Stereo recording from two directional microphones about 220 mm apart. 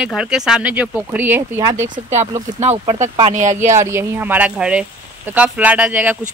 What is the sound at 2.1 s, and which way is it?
Speech, 30° right (ahead or behind).